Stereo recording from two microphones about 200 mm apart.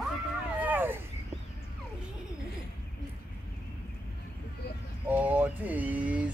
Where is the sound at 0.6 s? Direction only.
10° right (ahead or behind).